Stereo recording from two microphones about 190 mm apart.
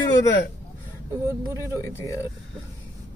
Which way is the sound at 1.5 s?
15° right (ahead or behind).